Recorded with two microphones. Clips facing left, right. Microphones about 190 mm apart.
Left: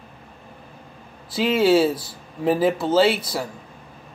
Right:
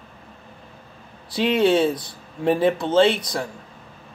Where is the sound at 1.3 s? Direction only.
5° left (ahead or behind).